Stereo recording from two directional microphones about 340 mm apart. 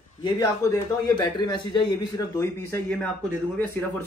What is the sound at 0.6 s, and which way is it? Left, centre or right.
Speech, centre.